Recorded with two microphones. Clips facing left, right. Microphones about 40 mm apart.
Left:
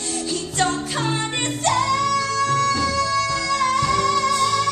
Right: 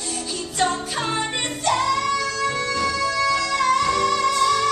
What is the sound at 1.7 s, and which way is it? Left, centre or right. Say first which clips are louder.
Music: left 1 dB; right.